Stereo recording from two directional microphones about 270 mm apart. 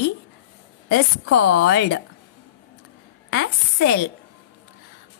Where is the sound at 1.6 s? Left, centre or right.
Left.